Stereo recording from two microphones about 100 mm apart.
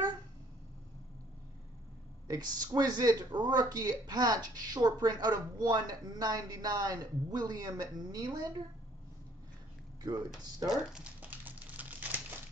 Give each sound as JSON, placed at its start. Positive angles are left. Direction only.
{"t": 2.2, "sound": "speech", "side_deg": -40}
{"t": 10.0, "sound": "speech", "side_deg": -45}
{"t": 10.8, "sound": "speech", "side_deg": -5}
{"t": 11.1, "sound": "crumpling", "side_deg": -15}